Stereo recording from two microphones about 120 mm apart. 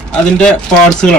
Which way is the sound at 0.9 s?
5° left (ahead or behind).